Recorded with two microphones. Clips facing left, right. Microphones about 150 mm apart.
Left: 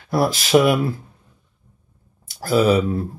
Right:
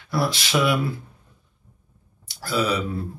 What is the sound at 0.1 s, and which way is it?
Speech, 45° left (ahead or behind).